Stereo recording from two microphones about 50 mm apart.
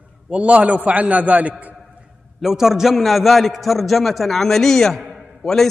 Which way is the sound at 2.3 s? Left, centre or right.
Centre.